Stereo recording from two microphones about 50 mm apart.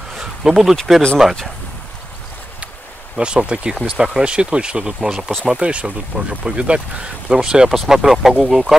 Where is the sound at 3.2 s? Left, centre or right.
Centre.